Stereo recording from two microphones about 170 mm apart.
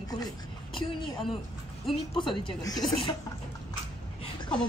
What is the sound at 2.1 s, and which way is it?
Speech, 30° left (ahead or behind).